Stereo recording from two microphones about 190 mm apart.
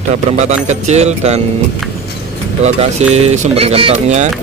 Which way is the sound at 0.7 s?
35° right (ahead or behind).